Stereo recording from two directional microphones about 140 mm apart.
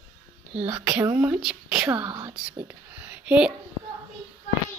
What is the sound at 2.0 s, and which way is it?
Speech, 30° right (ahead or behind).